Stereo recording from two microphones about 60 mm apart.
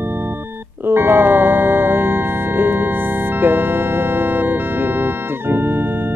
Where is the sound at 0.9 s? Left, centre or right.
Right.